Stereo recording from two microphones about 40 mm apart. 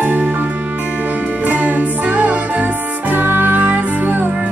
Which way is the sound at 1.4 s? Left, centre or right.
Right.